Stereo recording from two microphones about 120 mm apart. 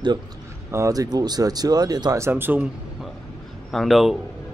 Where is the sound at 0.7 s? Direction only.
25° right (ahead or behind).